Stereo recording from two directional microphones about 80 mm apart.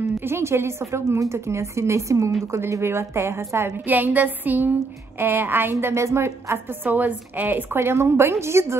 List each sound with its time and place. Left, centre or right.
0.0 s a woman's voice: right